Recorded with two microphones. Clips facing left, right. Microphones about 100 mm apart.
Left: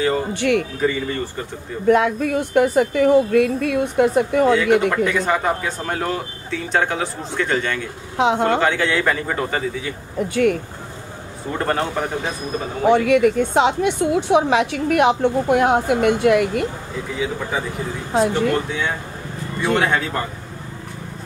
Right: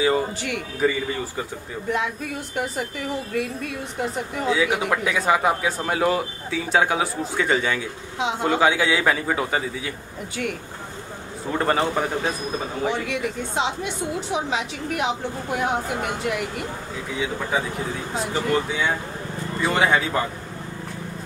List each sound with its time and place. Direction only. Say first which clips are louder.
0.7 s speech: left 2 dB; 5° right (ahead or behind)
1.9 s a woman's voice: left 10 dB; 60° left (ahead or behind)
4.6 s speech: left 6 dB; 10° right (ahead or behind)
8.2 s a woman's voice: left 6 dB; 60° left (ahead or behind)
8.5 s speech: left 1 dB; 10° right (ahead or behind)
11.5 s speech: even; centre (ahead or behind)
12.9 s a woman's voice: left 12 dB; 60° left (ahead or behind)
17.2 s speech: left 1 dB; centre (ahead or behind)